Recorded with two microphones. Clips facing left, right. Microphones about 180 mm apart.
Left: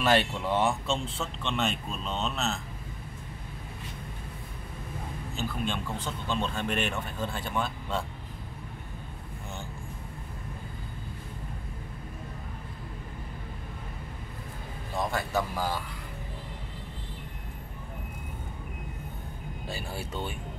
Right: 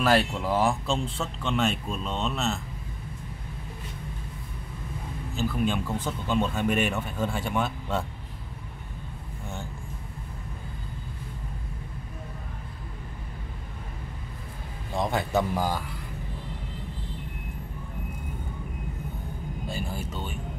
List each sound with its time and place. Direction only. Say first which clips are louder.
0.0 s speech: right 2 dB; centre (ahead or behind)
5.3 s speech: right 6 dB; 5° right (ahead or behind)
15.0 s speech: right 5 dB; 20° right (ahead or behind)